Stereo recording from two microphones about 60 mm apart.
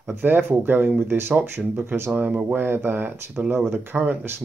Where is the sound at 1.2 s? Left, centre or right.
Right.